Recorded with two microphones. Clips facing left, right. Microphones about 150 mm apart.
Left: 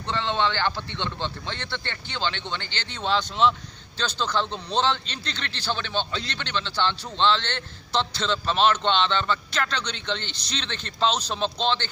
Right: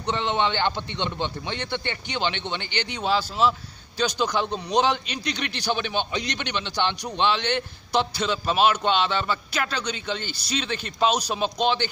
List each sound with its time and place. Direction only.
0.0 s a man's voice: 20° right (ahead or behind)